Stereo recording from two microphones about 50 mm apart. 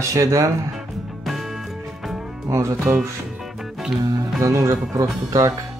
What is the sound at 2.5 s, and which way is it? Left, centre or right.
Speech, right.